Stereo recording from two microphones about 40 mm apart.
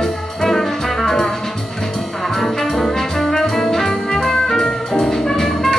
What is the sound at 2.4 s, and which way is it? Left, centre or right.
Brass instrument, centre.